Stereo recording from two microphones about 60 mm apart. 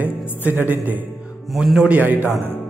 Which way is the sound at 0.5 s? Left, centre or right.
Right.